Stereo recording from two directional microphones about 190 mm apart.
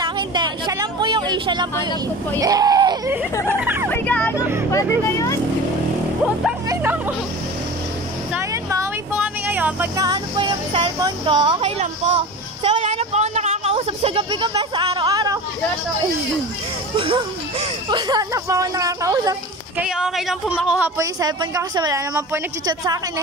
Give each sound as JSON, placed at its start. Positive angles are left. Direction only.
{"t": 0.0, "sound": "vehicle", "side_deg": -20}
{"t": 2.4, "sound": "speech", "side_deg": -20}
{"t": 3.9, "sound": "children playing", "side_deg": 10}
{"t": 4.6, "sound": "speech", "side_deg": 15}
{"t": 6.7, "sound": "speech", "side_deg": -10}
{"t": 8.4, "sound": "vehicle", "side_deg": -15}
{"t": 10.0, "sound": "a woman's voice", "side_deg": -25}
{"t": 12.6, "sound": "a sound", "side_deg": -35}
{"t": 16.9, "sound": "speech", "side_deg": -25}
{"t": 19.8, "sound": "speech", "side_deg": -5}
{"t": 21.0, "sound": "a woman's voice", "side_deg": -20}